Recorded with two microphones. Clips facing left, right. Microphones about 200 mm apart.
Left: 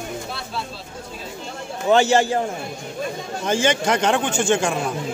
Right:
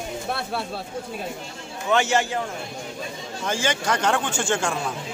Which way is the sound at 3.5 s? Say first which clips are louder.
Left 5 dB; 20° left (ahead or behind).